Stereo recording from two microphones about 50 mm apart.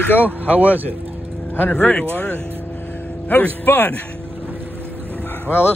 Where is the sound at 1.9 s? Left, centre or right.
Left.